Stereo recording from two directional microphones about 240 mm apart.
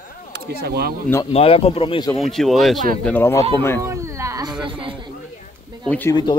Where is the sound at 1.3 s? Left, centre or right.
Left.